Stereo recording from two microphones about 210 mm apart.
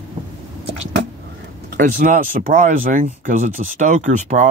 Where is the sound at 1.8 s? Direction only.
35° right (ahead or behind).